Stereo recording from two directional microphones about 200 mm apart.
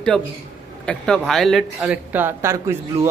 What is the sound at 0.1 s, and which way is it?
Speech, 5° left (ahead or behind).